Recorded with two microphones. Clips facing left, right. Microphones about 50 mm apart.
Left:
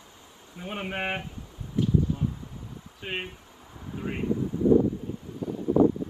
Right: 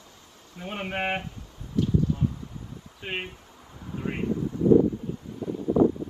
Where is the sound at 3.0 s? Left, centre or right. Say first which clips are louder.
Right 1 dB; centre.